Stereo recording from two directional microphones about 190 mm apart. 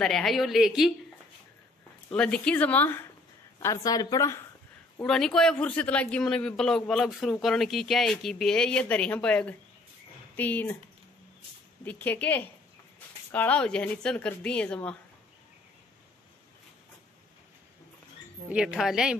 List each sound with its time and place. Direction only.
0.0 s a man's voice: centre (ahead or behind)
2.0 s a woman's voice: 5° left (ahead or behind)
5.0 s a man's voice: 5° left (ahead or behind)
11.8 s a man's voice: 10° left (ahead or behind)
18.5 s a man's voice: 5° right (ahead or behind)